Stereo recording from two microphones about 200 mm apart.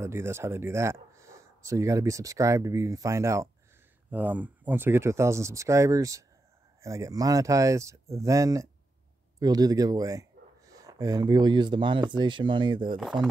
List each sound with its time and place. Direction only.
0.0 s speech: 15° right (ahead or behind)
13.0 s speech: centre (ahead or behind)